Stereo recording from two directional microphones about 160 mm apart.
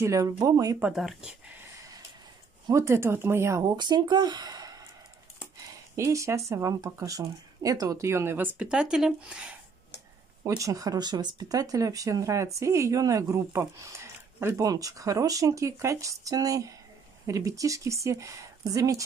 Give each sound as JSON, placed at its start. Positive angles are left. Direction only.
{"t": 0.0, "sound": "speech", "side_deg": -20}
{"t": 0.7, "sound": "speech", "side_deg": -5}
{"t": 2.7, "sound": "speech", "side_deg": -15}
{"t": 5.9, "sound": "speech", "side_deg": -20}
{"t": 10.4, "sound": "speech", "side_deg": -20}